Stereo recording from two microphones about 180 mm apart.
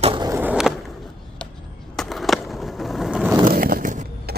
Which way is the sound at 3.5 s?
55° right (ahead or behind).